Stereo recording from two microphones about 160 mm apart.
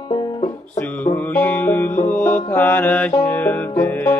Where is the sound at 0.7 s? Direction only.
10° left (ahead or behind).